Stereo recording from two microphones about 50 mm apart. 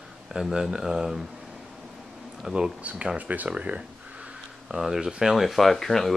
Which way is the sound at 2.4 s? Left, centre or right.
Centre.